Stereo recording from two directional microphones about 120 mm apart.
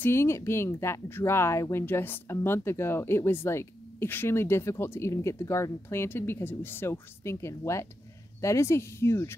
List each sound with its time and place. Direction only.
0.0 s speech: 20° left (ahead or behind)